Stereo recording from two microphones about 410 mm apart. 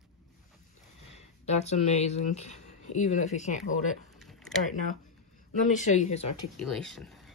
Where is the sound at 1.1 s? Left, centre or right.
Centre.